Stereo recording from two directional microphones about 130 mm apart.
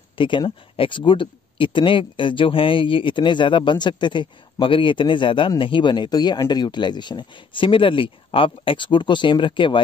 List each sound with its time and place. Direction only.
0.2 s speech: 40° left (ahead or behind)